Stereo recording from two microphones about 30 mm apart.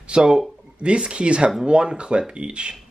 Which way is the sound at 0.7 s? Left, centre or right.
Right.